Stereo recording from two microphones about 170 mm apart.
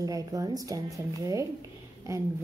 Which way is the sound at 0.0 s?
20° right (ahead or behind).